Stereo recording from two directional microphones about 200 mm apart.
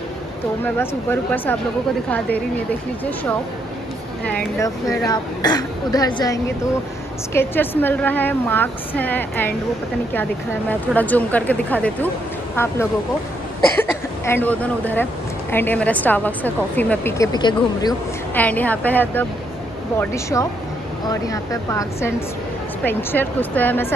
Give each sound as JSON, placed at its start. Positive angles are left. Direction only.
{"t": 1.3, "sound": "speech", "side_deg": 10}
{"t": 4.2, "sound": "speech", "side_deg": 5}
{"t": 4.6, "sound": "speech", "side_deg": 20}
{"t": 10.7, "sound": "speech", "side_deg": 10}
{"t": 13.7, "sound": "speech", "side_deg": 10}
{"t": 18.3, "sound": "speech", "side_deg": 10}